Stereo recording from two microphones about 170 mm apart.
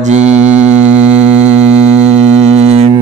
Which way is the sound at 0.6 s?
5° right (ahead or behind).